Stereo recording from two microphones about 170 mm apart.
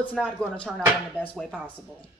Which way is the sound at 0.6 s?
5° left (ahead or behind).